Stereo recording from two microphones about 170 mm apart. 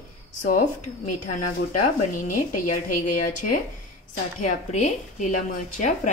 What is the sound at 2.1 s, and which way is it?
A woman's voice, 50° left (ahead or behind).